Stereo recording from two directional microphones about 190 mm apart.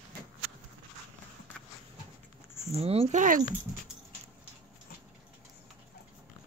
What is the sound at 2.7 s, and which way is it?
Speech, 30° right (ahead or behind).